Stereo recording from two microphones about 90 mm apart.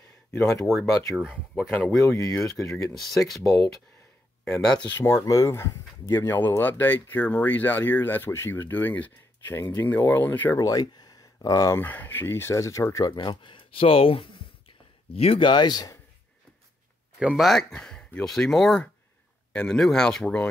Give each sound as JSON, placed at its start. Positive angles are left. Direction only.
{"t": 0.3, "sound": "speech", "side_deg": 35}
{"t": 2.0, "sound": "speech", "side_deg": 30}
{"t": 2.9, "sound": "speech", "side_deg": 0}
{"t": 4.9, "sound": "speech", "side_deg": 30}
{"t": 10.6, "sound": "speech", "side_deg": 45}
{"t": 11.8, "sound": "speech", "side_deg": 20}
{"t": 13.1, "sound": "speech", "side_deg": 60}
{"t": 17.4, "sound": "speech", "side_deg": 5}